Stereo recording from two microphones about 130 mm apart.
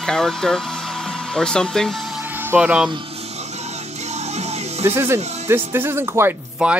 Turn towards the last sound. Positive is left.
turn(degrees=-5)  # may be behind; listen again after turning